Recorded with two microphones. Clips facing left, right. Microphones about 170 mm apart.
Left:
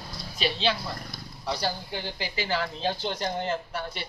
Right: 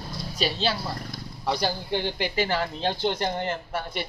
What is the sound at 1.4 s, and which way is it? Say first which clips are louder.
Speech: right 4 dB; 65° right (ahead or behind).